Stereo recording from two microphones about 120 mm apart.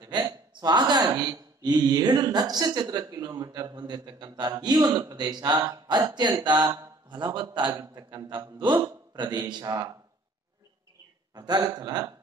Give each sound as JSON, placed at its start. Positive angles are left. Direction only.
{"t": 0.1, "sound": "speech", "side_deg": -35}
{"t": 11.3, "sound": "speech", "side_deg": -35}